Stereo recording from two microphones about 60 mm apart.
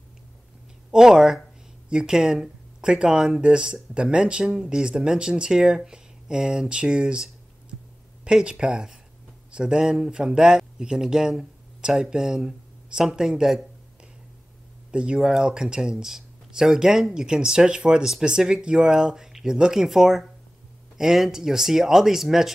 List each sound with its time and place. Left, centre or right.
0.9 s speech: centre
8.3 s speech: centre
14.9 s speech: centre